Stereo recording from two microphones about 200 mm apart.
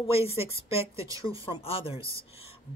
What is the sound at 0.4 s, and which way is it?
Speech, 30° left (ahead or behind).